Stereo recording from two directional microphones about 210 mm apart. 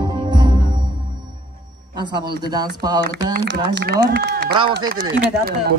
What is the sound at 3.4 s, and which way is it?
Speech, 55° right (ahead or behind).